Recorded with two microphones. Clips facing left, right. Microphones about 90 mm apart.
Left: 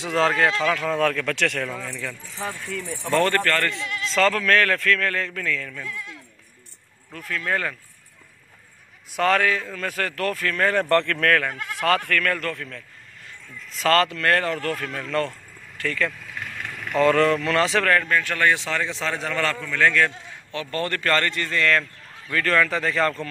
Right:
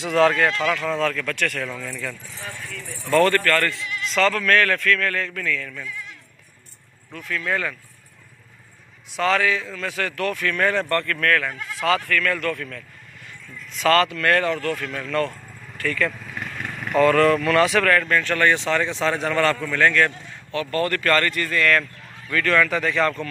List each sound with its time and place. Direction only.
0.0 s speech: 25° left (ahead or behind)
0.9 s speech: 60° left (ahead or behind)
1.7 s speech: 20° left (ahead or behind)
7.2 s speech: 40° left (ahead or behind)
9.1 s a man's voice: 55° left (ahead or behind); by 10.8 s 35° left (ahead or behind)
10.8 s speech: 75° left (ahead or behind)
11.4 s speech: 60° left (ahead or behind)
12.4 s speech: 30° left (ahead or behind)
18.0 s speech: 10° left (ahead or behind)
20.5 s speech: 25° left (ahead or behind)